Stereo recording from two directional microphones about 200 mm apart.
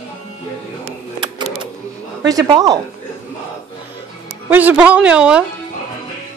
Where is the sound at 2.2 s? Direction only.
15° right (ahead or behind).